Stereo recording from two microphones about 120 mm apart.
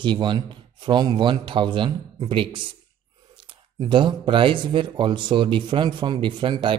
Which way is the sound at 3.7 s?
45° right (ahead or behind).